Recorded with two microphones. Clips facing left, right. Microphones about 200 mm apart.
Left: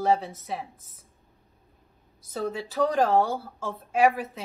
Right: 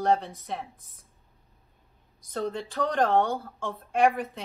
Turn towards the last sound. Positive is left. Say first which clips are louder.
# left 1 dB
turn(degrees=5)  # may be behind; listen again after turning